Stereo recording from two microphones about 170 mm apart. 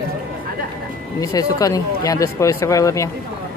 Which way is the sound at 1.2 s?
20° left (ahead or behind).